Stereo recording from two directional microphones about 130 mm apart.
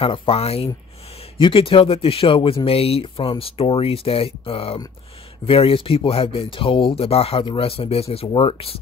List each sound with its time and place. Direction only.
0.0 s speech: 45° left (ahead or behind)